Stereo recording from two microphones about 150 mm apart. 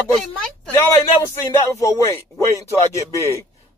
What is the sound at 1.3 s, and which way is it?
Speech, 15° left (ahead or behind).